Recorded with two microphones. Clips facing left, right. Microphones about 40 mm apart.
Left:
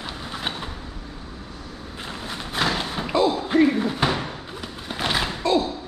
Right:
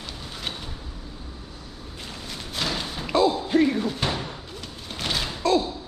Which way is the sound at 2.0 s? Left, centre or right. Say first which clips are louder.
Left 5 dB; left.